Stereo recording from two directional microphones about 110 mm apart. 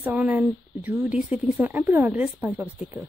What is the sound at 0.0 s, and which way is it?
A woman's voice, 15° right (ahead or behind).